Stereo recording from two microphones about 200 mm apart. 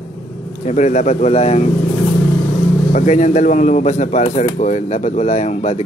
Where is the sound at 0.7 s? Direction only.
35° left (ahead or behind).